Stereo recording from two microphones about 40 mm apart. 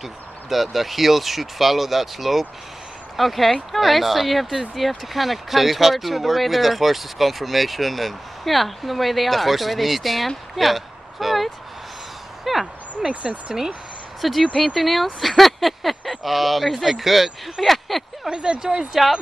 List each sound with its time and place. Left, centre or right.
0.0 s speech: centre
13.1 s speech: right
13.5 s speech: right
14.2 s speech: centre
15.1 s a sound: centre
16.3 s speech: centre
18.3 s speech: right
18.9 s speech: centre